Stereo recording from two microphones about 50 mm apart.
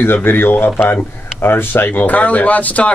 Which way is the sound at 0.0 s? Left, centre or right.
Left.